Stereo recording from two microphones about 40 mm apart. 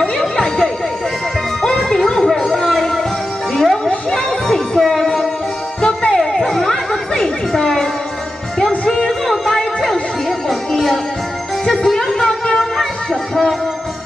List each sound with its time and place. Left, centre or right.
0.2 s a sound: centre
1.8 s music: centre
2.2 s a sound: centre
3.6 s music: centre
5.8 s music: left
9.3 s music: centre
10.7 s music: centre